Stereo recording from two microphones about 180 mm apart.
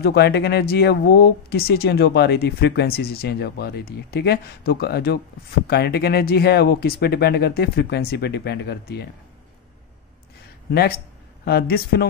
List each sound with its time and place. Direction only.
0.0 s speech: 65° left (ahead or behind)
11.4 s speech: 60° left (ahead or behind)